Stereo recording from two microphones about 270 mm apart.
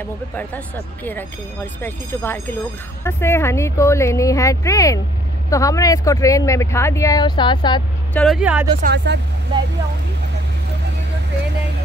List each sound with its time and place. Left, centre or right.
1.0 s speech: centre
8.1 s speech: centre
8.8 s speech: right